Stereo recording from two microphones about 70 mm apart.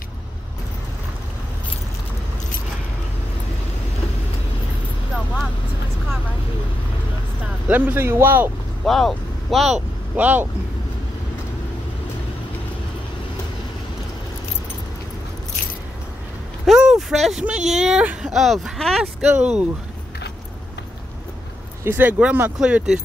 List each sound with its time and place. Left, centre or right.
7.6 s a man's voice: right
8.8 s speech: centre
10.1 s a man's voice: right
16.6 s a sound: centre
17.5 s speech: centre
19.2 s speech: centre
21.8 s a man's voice: right
22.6 s speech: centre